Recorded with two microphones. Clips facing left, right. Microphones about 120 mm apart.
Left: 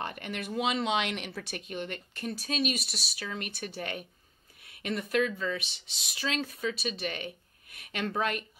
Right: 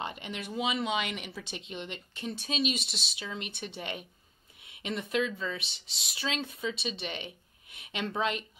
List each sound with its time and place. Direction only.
0.0 s speech: 15° right (ahead or behind)
1.5 s speech: 20° right (ahead or behind)
2.8 s speech: 10° left (ahead or behind)
3.2 s speech: 25° right (ahead or behind)
4.6 s a sound: 25° right (ahead or behind)
5.4 s speech: 30° right (ahead or behind)